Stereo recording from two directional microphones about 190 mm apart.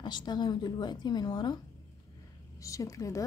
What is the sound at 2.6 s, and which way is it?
Speech, 15° left (ahead or behind).